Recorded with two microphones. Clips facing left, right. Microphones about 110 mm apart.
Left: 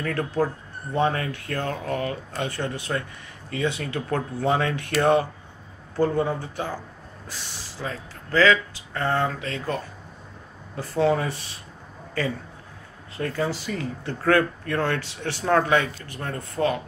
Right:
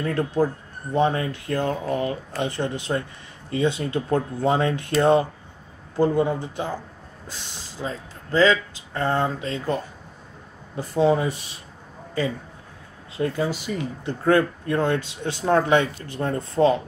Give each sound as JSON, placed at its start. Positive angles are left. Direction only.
{"t": 0.0, "sound": "speech", "side_deg": -30}
{"t": 10.8, "sound": "speech", "side_deg": -20}
{"t": 13.2, "sound": "speech", "side_deg": -20}